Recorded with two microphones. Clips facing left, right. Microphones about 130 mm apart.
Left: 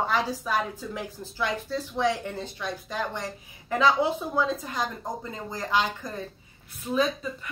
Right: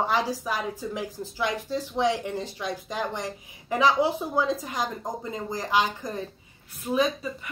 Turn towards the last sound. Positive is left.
turn(degrees=-10)  # may be behind; listen again after turning